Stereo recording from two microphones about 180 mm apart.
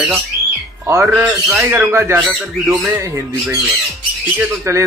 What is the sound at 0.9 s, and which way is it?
Speech, 15° right (ahead or behind).